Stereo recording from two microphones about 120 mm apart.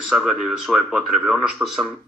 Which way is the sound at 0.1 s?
Centre (ahead or behind).